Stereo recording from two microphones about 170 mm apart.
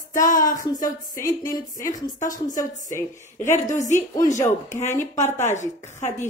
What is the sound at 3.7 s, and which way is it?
Speech, 45° left (ahead or behind).